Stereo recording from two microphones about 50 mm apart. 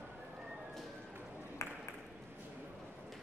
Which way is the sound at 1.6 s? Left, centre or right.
Left.